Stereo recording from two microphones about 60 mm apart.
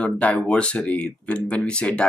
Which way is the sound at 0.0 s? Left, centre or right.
Left.